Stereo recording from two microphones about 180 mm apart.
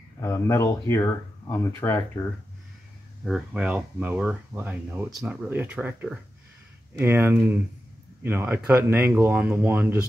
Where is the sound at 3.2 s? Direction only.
5° right (ahead or behind).